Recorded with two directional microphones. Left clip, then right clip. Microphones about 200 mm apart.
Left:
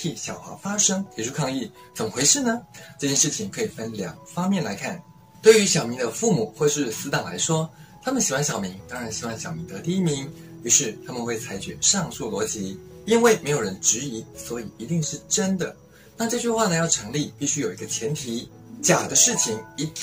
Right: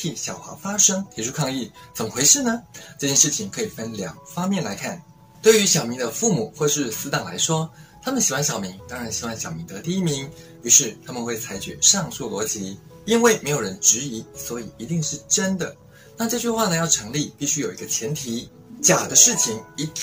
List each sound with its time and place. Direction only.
0.0 s speech: 15° right (ahead or behind)